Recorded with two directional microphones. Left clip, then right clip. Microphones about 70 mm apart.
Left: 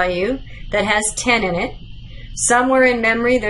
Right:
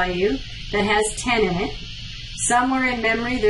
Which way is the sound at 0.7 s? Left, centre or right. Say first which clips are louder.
Left 2 dB; left.